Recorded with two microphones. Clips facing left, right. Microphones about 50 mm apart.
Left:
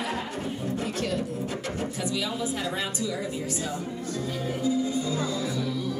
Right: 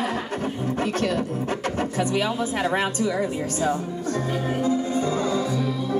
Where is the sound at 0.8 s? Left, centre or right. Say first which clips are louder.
Right 7 dB; right.